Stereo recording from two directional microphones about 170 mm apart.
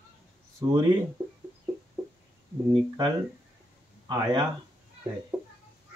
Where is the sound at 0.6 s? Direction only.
25° right (ahead or behind).